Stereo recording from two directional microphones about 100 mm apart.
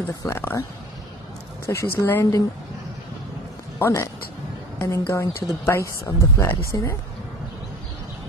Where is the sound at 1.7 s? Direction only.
25° left (ahead or behind).